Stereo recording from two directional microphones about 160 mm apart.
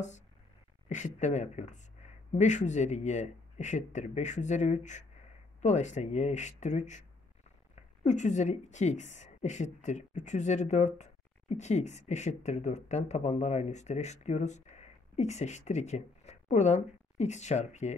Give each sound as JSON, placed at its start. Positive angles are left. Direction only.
{"t": 0.8, "sound": "a woman's voice", "side_deg": 50}